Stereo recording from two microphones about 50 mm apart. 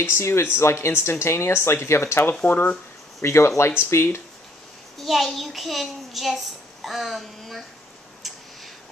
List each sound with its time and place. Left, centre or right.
0.0 s speech: left
2.4 s speech: left
3.2 s speech: left
4.9 s a child's voice: centre